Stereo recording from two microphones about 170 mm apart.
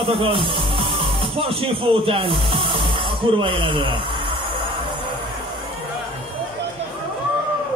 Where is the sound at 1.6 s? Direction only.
35° right (ahead or behind).